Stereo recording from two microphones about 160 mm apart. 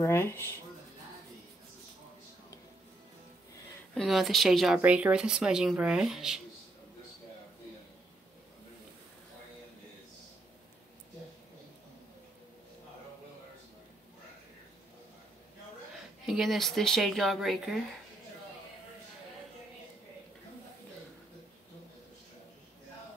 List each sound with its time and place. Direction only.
0.0 s speech: 15° left (ahead or behind)
3.9 s speech: centre (ahead or behind)
16.3 s speech: centre (ahead or behind)